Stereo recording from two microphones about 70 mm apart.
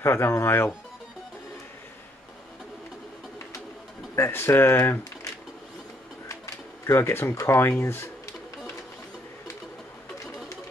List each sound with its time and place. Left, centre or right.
0.0 s speech: left
4.1 s speech: left
6.2 s a sound: left
7.3 s speech: left